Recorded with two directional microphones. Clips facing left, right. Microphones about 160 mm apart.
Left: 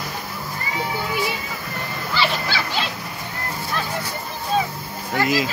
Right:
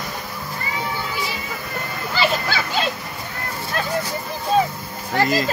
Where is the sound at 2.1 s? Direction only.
45° right (ahead or behind).